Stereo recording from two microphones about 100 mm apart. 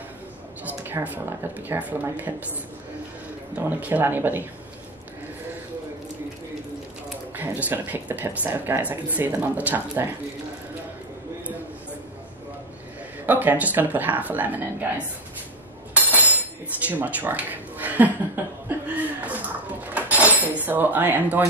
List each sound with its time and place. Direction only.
0.7 s speech: 20° right (ahead or behind)
3.5 s speech: 15° right (ahead or behind)
7.3 s speech: 15° right (ahead or behind)
13.3 s speech: 15° right (ahead or behind)
15.9 s a sound: 15° right (ahead or behind)
18.7 s chuckle: 15° right (ahead or behind)
19.9 s dishes: 15° right (ahead or behind)
20.6 s speech: 20° right (ahead or behind)